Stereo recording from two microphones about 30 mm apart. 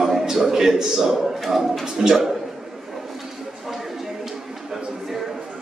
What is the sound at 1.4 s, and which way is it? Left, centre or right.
Speech, centre.